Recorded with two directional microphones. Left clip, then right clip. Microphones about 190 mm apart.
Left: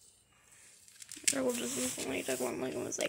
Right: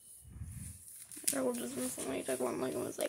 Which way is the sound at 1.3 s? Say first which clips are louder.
Right 1 dB; 20° left (ahead or behind).